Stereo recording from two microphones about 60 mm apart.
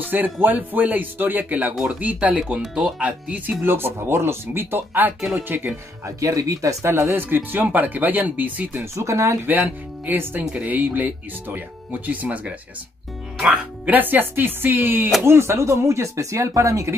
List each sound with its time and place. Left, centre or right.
0.0 s speech: right
3.6 s speech: right
6.0 s speech: right
6.8 s speech: right
7.2 s speech: right
8.9 s speech: right
9.7 s speech: right
13.9 s speech: right
15.2 s speech: right